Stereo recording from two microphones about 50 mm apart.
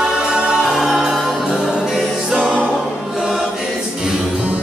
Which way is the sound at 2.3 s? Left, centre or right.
Right.